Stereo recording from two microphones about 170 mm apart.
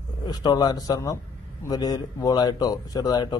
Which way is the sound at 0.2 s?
25° left (ahead or behind).